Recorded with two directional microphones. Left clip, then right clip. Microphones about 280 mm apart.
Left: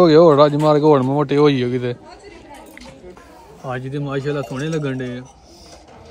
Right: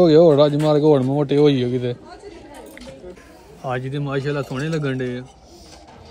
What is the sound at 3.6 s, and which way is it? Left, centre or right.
Speech, centre.